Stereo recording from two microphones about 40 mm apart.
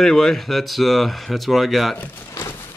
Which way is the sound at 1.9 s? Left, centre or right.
Left.